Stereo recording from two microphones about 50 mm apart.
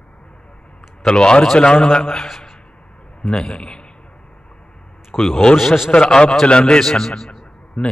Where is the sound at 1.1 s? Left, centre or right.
Centre.